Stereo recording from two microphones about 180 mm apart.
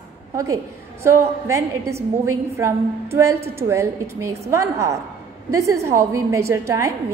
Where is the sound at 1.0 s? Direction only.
15° right (ahead or behind).